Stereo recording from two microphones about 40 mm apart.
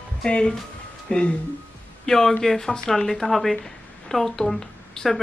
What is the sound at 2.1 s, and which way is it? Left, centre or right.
A woman's voice, centre.